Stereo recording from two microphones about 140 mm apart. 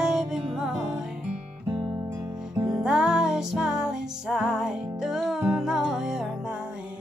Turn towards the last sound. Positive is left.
turn(degrees=-5)  # may be behind; listen again after turning